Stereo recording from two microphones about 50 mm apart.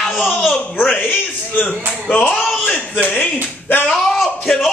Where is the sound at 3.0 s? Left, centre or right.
Left.